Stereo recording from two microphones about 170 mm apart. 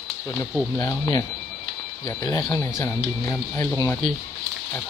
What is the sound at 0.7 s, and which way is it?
Speech, 20° left (ahead or behind).